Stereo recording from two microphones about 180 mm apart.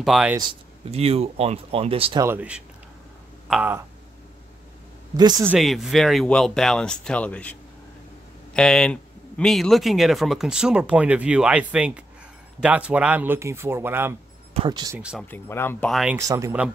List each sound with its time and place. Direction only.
0.0 s speech: 5° right (ahead or behind)
0.4 s speech: 30° right (ahead or behind)
2.2 s speech: 10° right (ahead or behind)
5.1 s speech: 20° right (ahead or behind)
5.5 s speech: centre (ahead or behind)
8.5 s speech: 5° left (ahead or behind); by 14.1 s 15° right (ahead or behind)
14.5 s speech: 30° right (ahead or behind)
15.0 s speech: 5° right (ahead or behind)
15.2 s speech: 10° left (ahead or behind)
15.9 s speech: 5° right (ahead or behind)
16.2 s speech: 15° right (ahead or behind)